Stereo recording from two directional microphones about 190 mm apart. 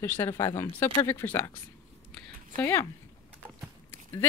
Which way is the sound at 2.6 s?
10° left (ahead or behind).